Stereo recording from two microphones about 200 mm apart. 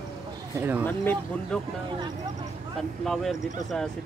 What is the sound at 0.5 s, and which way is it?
Speech, 10° right (ahead or behind).